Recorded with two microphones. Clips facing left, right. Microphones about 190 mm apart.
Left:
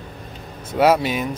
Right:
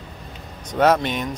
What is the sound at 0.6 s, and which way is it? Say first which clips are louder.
Speech: left 1 dB; 10° left (ahead or behind).